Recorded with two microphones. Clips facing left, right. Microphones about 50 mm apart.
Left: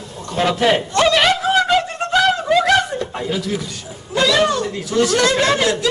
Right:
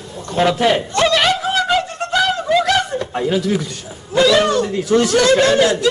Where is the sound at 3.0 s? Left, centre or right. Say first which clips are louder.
Right 3 dB; centre.